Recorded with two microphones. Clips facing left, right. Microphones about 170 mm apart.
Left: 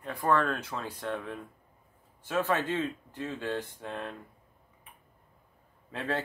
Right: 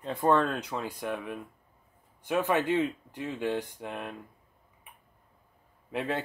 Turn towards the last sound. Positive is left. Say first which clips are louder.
# right 2 dB
turn(degrees=-15)  # may be behind; listen again after turning